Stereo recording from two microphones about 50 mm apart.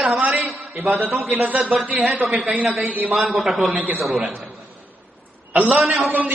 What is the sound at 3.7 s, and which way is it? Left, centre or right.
Speech, right.